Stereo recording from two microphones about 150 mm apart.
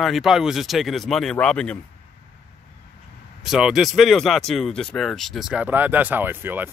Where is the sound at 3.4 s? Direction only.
5° right (ahead or behind).